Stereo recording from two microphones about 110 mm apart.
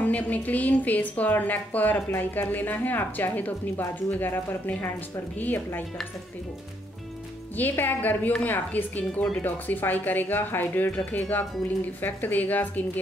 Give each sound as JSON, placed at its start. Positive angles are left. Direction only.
{"t": 0.0, "sound": "speech", "side_deg": 15}
{"t": 7.5, "sound": "speech", "side_deg": 20}